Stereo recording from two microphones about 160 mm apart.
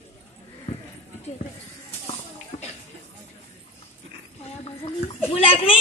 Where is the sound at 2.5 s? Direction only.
45° left (ahead or behind).